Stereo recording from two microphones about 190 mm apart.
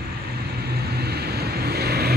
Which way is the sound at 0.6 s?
55° right (ahead or behind).